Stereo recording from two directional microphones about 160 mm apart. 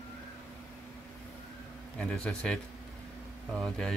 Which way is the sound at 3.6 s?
5° left (ahead or behind).